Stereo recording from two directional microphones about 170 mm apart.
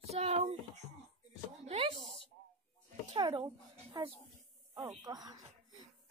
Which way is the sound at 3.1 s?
25° right (ahead or behind).